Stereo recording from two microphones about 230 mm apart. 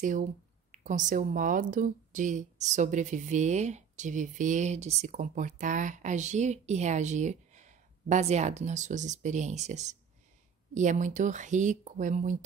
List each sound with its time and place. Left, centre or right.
0.7 s speech: right